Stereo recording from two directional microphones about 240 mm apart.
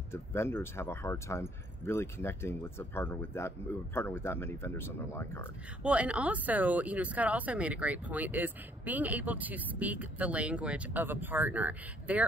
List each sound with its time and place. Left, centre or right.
0.1 s speech: centre
5.8 s speech: centre